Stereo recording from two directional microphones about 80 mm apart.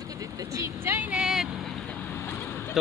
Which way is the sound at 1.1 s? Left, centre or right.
Centre.